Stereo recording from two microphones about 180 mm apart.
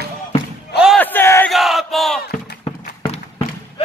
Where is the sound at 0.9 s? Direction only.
10° left (ahead or behind).